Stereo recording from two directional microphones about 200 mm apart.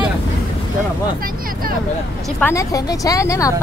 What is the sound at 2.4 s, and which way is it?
A woman's voice, 15° left (ahead or behind).